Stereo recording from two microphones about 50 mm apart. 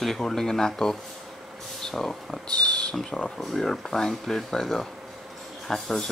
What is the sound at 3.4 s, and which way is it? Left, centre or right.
Speech, centre.